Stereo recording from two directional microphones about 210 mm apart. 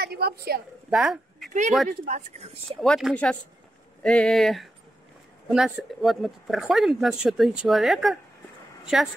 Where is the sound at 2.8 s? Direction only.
Centre (ahead or behind).